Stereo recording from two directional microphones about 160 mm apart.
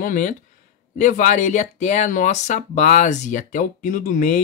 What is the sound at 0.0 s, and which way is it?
Speech, 55° left (ahead or behind).